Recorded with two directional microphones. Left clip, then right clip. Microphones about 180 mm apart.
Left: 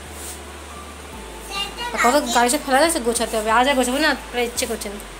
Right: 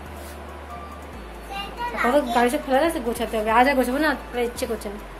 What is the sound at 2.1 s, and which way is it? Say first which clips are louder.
Speech: left 2 dB; 30° left (ahead or behind).